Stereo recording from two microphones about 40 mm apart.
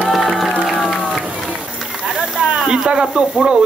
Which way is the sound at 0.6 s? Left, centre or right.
Centre.